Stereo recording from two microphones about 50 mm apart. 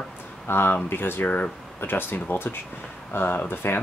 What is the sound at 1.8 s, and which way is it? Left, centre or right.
Speech, left.